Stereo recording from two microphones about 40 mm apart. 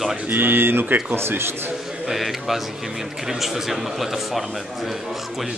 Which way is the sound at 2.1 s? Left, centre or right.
Centre.